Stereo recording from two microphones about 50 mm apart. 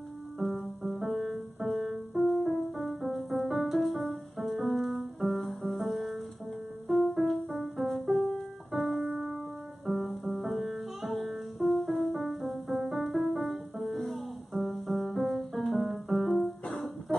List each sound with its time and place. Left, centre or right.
0.4 s music: centre
9.0 s music: centre
9.8 s music: centre
17.1 s music: left